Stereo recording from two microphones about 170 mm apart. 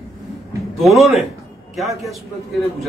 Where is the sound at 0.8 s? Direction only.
Centre (ahead or behind).